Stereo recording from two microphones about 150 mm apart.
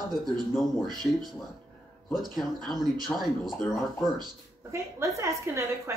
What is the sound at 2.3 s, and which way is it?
Speech, centre (ahead or behind).